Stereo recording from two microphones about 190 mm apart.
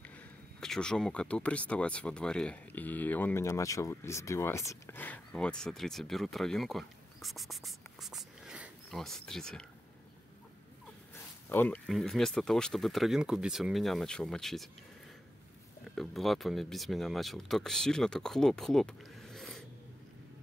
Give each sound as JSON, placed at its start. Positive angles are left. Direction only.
{"t": 0.6, "sound": "speech", "side_deg": 5}
{"t": 11.4, "sound": "speech", "side_deg": 10}
{"t": 15.9, "sound": "speech", "side_deg": 0}